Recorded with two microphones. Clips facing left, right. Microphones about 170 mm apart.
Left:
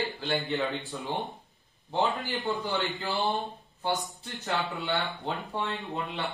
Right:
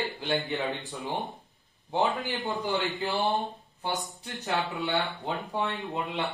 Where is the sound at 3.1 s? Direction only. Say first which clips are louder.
Right 1 dB; centre (ahead or behind).